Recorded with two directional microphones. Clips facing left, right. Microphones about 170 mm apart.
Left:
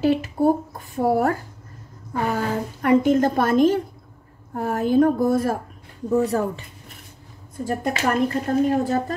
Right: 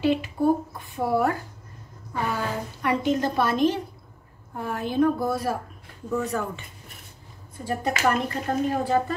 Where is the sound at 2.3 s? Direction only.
45° left (ahead or behind).